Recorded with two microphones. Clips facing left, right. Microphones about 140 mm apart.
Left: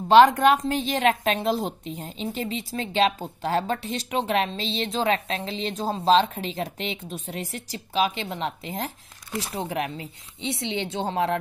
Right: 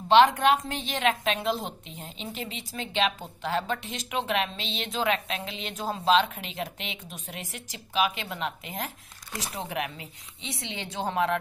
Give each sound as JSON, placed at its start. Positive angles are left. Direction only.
{"t": 0.1, "sound": "a woman's voice", "side_deg": 40}